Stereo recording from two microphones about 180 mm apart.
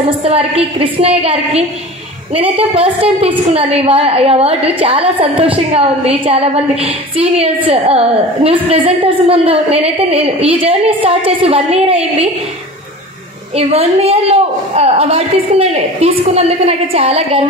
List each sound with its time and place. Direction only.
0.2 s a woman's voice: 35° right (ahead or behind)
13.6 s a woman's voice: 35° right (ahead or behind)